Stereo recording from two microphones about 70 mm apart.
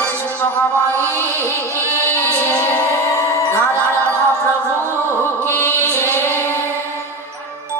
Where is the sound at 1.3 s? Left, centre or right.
Right.